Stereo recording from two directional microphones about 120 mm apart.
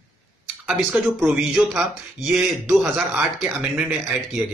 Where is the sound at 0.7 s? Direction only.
10° right (ahead or behind).